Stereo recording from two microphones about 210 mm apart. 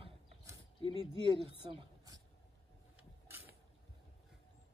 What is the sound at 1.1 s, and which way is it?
Speech, 25° right (ahead or behind).